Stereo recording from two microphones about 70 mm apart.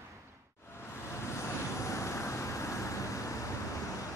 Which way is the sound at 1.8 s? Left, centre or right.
Left.